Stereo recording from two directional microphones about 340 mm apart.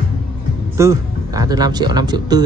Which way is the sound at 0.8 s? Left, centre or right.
Centre.